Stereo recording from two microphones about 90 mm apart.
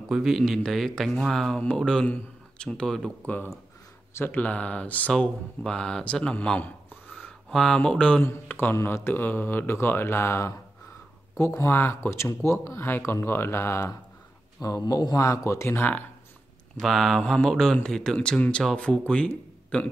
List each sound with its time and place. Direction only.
0.1 s speech: centre (ahead or behind)
4.1 s speech: 25° left (ahead or behind)
7.5 s speech: 5° left (ahead or behind)
8.2 s speech: 25° left (ahead or behind)
16.8 s a man's voice: centre (ahead or behind)